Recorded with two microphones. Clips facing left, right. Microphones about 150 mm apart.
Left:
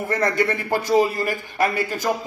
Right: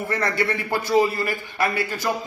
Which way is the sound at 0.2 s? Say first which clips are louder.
Left 3 dB; 45° left (ahead or behind).